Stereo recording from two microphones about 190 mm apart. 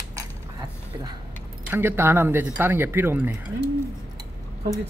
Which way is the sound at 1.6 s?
10° right (ahead or behind).